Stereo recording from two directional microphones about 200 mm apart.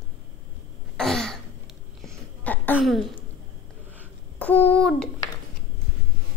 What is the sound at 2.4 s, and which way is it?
Throat clearing, 10° left (ahead or behind).